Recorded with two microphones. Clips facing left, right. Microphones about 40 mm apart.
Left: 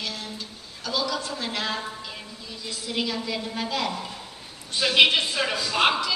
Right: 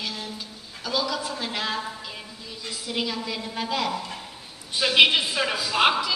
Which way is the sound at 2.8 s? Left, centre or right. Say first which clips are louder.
Even; centre.